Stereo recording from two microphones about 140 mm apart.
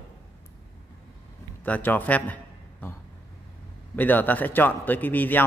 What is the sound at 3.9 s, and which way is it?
A man's voice, 15° left (ahead or behind).